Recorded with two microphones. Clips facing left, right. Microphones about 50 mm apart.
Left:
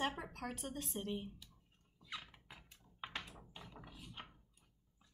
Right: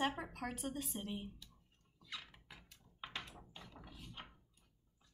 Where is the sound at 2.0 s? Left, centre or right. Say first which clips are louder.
Left 1 dB; centre.